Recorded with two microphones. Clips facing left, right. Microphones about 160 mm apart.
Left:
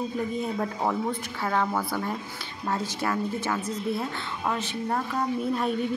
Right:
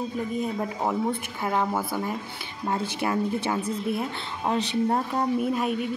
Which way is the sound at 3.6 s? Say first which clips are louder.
Right 1 dB; 30° right (ahead or behind).